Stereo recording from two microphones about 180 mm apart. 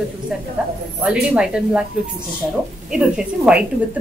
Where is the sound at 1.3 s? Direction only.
5° right (ahead or behind).